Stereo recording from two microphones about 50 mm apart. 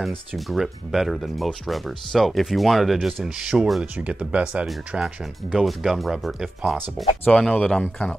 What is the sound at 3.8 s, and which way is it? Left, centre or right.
Speech, right.